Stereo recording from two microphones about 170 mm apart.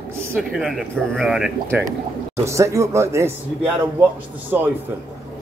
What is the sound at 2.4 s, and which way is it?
Speech, 15° right (ahead or behind).